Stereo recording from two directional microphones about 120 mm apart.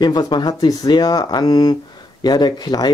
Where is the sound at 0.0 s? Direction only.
35° left (ahead or behind).